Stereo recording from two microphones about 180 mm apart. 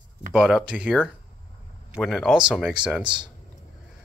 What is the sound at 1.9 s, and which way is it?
Speech, centre (ahead or behind).